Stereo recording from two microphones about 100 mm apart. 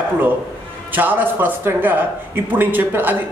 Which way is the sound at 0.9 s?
20° right (ahead or behind).